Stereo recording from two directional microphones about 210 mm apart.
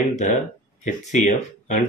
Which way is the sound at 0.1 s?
35° left (ahead or behind).